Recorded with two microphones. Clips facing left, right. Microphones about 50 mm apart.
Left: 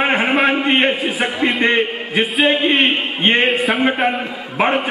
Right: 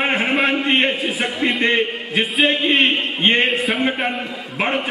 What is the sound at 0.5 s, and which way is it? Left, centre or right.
A man's voice, centre.